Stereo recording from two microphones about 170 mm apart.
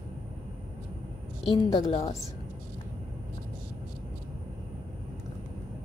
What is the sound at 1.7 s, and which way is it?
Speech, 30° left (ahead or behind).